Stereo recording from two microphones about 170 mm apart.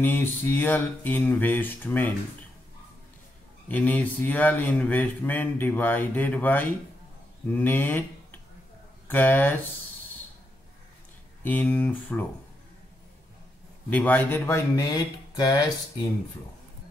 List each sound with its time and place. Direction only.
0.0 s speech: 10° left (ahead or behind)
3.6 s speech: 10° left (ahead or behind)
11.4 s speech: 10° left (ahead or behind)
13.8 s speech: 10° left (ahead or behind)